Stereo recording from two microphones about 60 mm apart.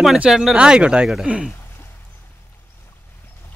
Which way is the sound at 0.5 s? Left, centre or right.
Centre.